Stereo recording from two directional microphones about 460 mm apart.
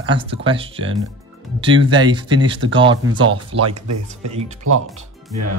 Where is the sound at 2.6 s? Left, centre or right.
Right.